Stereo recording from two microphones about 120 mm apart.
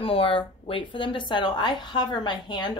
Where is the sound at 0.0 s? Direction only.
50° left (ahead or behind).